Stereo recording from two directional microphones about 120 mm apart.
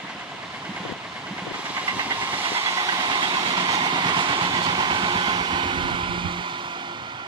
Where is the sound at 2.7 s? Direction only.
30° right (ahead or behind).